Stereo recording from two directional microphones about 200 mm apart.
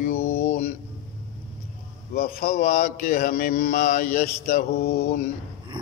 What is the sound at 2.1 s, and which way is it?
Speech, 45° left (ahead or behind).